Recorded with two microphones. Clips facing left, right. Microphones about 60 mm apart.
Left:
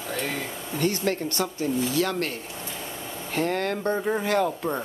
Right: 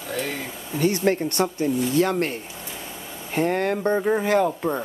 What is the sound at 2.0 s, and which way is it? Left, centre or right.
Speech, centre.